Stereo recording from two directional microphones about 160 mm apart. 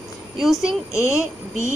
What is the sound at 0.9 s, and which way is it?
Speech, 20° left (ahead or behind).